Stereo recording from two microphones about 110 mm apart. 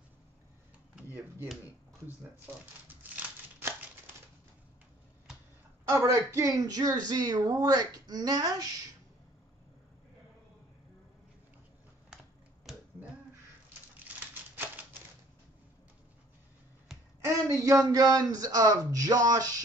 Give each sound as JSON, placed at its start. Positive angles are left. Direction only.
{"t": 3.0, "sound": "crumpling", "side_deg": -15}
{"t": 6.0, "sound": "speech", "side_deg": -25}
{"t": 12.7, "sound": "finger snapping", "side_deg": 0}
{"t": 14.0, "sound": "typewriter", "side_deg": -15}
{"t": 17.2, "sound": "speech", "side_deg": -30}